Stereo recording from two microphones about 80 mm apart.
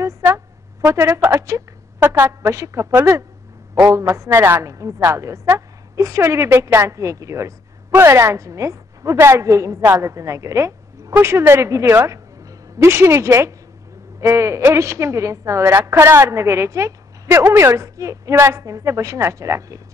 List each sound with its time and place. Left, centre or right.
0.0 s a sound: right
0.9 s a woman's voice: right
2.5 s a woman's voice: right
3.9 s a woman's voice: right